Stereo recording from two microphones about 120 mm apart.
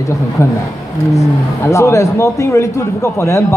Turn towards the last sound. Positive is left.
turn(degrees=25)  # may be behind; listen again after turning